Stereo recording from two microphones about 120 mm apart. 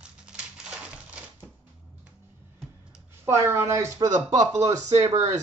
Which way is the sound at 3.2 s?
20° right (ahead or behind).